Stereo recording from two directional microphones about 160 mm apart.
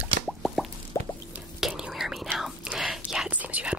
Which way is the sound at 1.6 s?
5° right (ahead or behind).